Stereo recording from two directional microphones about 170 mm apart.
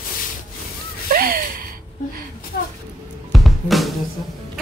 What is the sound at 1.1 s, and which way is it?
Gasp, 60° right (ahead or behind).